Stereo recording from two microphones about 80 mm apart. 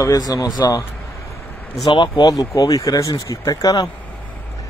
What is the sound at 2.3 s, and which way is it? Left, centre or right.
Speech, left.